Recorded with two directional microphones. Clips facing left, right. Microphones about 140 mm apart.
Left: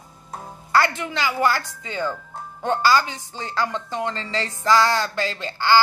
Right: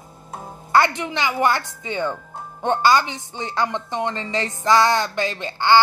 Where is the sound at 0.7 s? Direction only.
20° right (ahead or behind).